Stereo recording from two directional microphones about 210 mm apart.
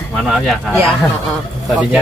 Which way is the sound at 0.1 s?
5° left (ahead or behind).